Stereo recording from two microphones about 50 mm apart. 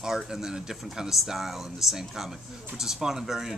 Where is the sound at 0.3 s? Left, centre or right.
Centre.